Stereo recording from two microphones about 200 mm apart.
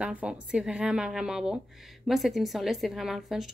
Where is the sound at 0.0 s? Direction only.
5° right (ahead or behind).